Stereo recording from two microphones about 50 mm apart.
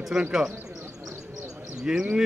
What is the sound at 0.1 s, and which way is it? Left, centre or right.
Speech, centre.